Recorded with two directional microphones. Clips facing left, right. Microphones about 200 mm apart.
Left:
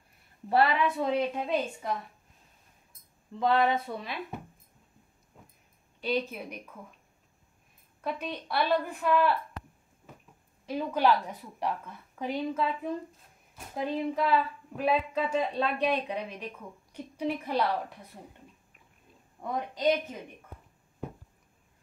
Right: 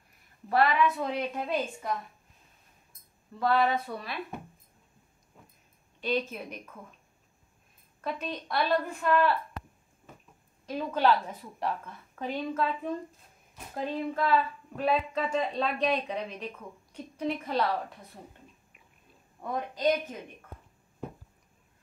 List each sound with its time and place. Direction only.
0.5 s speech: 30° left (ahead or behind)
0.9 s speech: 15° left (ahead or behind)
3.3 s speech: 20° left (ahead or behind)
5.9 s speech: 10° left (ahead or behind)
8.0 s speech: 10° left (ahead or behind)
10.7 s speech: 10° left (ahead or behind)
19.4 s speech: 15° left (ahead or behind)